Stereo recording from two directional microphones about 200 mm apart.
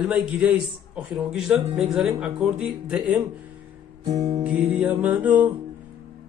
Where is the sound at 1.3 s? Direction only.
5° right (ahead or behind).